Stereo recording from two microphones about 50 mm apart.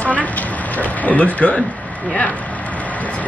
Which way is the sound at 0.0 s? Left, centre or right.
Left.